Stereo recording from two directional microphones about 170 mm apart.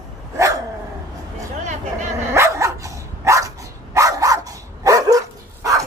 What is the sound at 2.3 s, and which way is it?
Dog, 15° right (ahead or behind).